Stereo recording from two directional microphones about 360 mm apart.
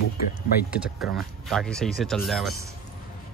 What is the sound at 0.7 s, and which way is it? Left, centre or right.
Speech, centre.